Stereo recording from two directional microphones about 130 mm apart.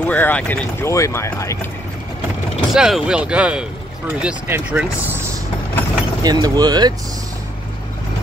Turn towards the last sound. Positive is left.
turn(degrees=-30)  # may be behind; listen again after turning